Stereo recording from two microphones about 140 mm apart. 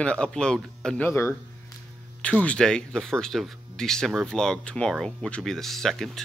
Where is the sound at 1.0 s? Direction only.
20° left (ahead or behind).